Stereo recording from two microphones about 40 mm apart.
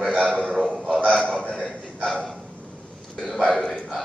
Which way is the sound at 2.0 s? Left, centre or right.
Centre.